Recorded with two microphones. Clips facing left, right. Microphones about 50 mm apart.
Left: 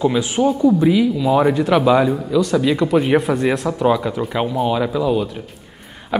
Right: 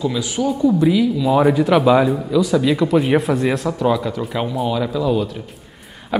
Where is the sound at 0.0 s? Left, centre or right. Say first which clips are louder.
Left 4 dB; left.